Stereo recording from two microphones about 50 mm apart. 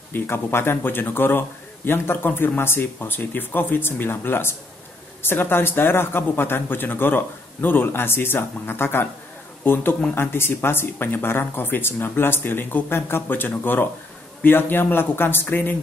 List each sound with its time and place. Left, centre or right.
0.1 s speech: left
15.4 s a woman's voice: left